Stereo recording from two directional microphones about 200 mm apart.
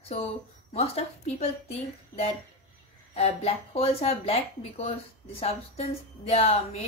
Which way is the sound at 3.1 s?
30° left (ahead or behind).